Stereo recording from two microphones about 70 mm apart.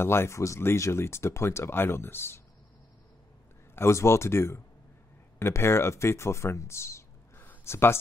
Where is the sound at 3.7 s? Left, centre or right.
Left.